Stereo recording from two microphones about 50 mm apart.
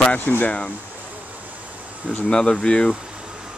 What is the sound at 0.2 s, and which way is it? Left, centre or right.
Speech, left.